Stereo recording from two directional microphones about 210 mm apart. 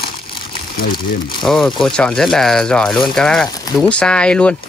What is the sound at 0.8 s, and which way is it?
Speech, 45° left (ahead or behind).